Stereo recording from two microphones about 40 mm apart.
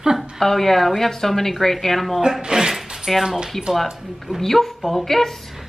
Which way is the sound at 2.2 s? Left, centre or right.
Centre.